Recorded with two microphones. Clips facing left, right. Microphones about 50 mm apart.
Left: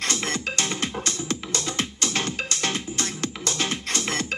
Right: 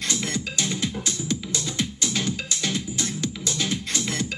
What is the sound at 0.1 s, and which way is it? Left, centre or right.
Music, left.